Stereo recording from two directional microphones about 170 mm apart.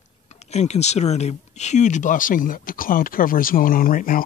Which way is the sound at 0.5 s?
40° left (ahead or behind).